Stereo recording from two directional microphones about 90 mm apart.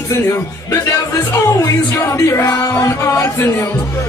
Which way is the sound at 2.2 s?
35° left (ahead or behind).